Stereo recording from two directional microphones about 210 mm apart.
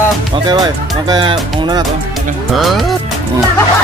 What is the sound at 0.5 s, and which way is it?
Speech, 20° right (ahead or behind).